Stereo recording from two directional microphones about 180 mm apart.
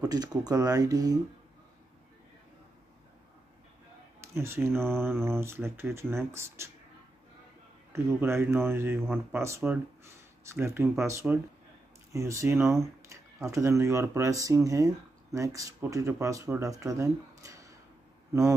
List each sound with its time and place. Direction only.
0.0 s speech: 20° right (ahead or behind)
4.2 s speech: 15° right (ahead or behind)
7.9 s speech: 15° right (ahead or behind)